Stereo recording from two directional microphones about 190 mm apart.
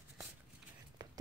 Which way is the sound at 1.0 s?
20° right (ahead or behind).